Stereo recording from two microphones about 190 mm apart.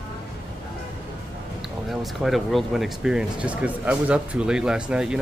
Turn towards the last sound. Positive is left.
turn(degrees=-5)  # may be behind; listen again after turning